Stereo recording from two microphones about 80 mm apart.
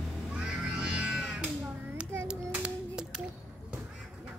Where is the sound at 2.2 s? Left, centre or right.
Centre.